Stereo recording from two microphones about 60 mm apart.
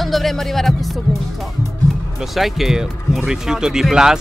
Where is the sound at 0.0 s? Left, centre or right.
Centre.